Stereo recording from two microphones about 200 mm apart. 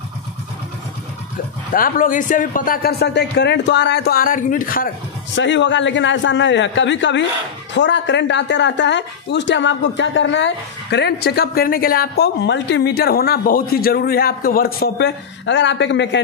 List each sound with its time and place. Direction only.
1.7 s speech: 45° left (ahead or behind)
5.3 s speech: 65° left (ahead or behind)